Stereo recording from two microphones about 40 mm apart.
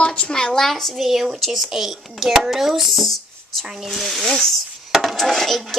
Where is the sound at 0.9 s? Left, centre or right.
Centre.